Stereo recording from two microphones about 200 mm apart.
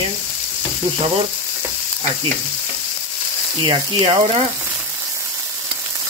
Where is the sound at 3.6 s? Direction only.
30° right (ahead or behind).